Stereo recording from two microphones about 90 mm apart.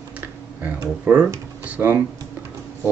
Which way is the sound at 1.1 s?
20° right (ahead or behind).